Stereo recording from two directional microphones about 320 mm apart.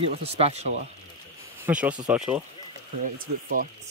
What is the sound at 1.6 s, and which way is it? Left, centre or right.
Speech, centre.